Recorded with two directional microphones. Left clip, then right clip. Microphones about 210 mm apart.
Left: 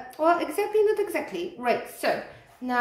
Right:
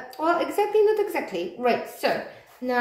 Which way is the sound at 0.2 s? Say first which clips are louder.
Even; 10° left (ahead or behind).